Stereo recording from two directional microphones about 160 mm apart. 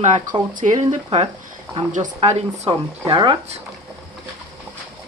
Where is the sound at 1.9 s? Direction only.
45° right (ahead or behind).